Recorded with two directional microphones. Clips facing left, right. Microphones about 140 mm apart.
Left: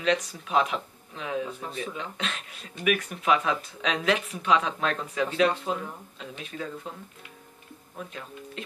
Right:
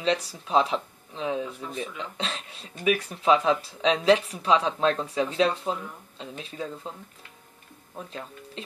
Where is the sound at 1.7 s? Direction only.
30° left (ahead or behind).